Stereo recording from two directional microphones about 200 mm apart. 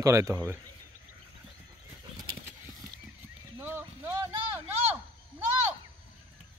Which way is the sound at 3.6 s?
10° right (ahead or behind).